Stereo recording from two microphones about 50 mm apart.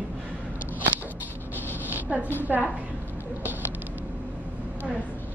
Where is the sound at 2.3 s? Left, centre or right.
Right.